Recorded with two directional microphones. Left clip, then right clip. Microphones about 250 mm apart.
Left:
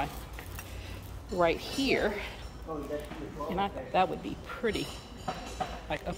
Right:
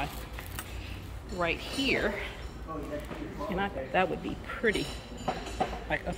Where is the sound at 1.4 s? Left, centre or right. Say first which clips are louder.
Left 2 dB; left.